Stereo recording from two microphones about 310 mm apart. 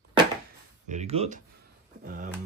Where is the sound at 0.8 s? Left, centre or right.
Right.